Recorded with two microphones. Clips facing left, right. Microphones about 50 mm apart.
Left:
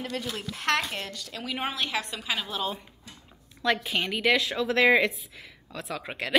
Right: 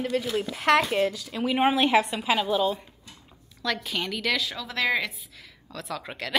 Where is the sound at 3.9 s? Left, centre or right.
Centre.